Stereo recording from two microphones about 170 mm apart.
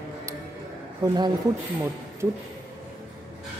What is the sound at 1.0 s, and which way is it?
Speech, 20° right (ahead or behind).